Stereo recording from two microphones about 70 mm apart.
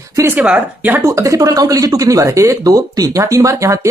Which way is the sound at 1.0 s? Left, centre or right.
Right.